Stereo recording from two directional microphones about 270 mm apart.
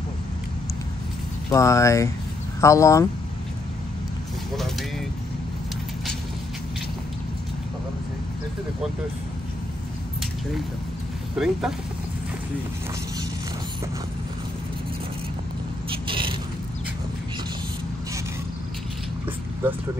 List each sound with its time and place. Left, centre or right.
1.5 s speech: centre
11.3 s speech: centre
15.9 s a sound: centre